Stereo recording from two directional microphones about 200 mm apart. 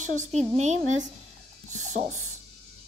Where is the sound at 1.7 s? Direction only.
40° right (ahead or behind).